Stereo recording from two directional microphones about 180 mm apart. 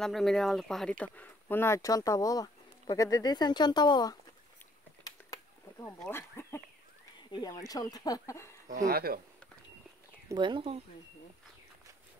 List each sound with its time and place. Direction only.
0.0 s speech: centre (ahead or behind); by 4.2 s 25° left (ahead or behind)
5.3 s a sound: 15° left (ahead or behind)
7.2 s speech: 25° left (ahead or behind)
8.6 s speech: 50° right (ahead or behind)
10.2 s speech: 25° right (ahead or behind)